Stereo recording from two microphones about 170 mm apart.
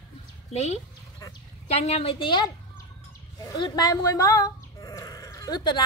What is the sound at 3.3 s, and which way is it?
Sheep, 20° left (ahead or behind).